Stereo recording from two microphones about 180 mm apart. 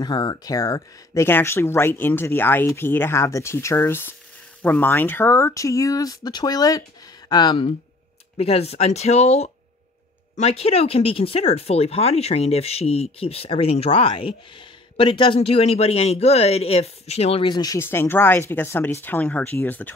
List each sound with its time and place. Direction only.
0.0 s speech: 25° left (ahead or behind)